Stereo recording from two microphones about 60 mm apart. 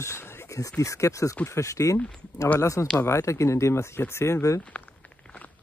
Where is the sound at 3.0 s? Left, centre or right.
Left.